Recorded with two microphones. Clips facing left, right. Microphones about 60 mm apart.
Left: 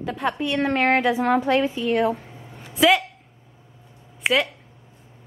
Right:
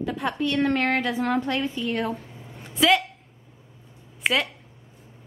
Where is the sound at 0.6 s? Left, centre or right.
Centre.